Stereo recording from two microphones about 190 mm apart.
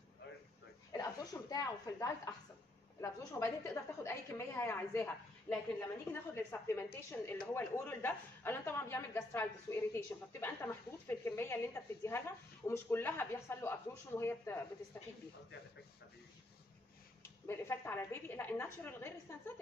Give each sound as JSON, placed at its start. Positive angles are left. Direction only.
{"t": 0.9, "sound": "a sound", "side_deg": 20}
{"t": 1.5, "sound": "a woman's voice", "side_deg": 20}
{"t": 17.2, "sound": "a woman's voice", "side_deg": 15}